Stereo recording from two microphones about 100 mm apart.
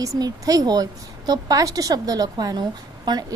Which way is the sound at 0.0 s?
35° right (ahead or behind).